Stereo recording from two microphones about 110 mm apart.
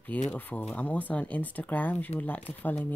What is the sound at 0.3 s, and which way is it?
Speech, 15° left (ahead or behind).